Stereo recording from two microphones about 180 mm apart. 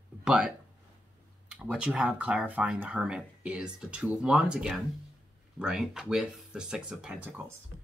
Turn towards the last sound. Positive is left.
turn(degrees=-5)  # may be behind; listen again after turning